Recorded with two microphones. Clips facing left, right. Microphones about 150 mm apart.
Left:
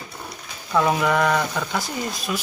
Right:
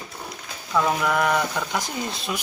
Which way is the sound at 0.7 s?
Centre (ahead or behind).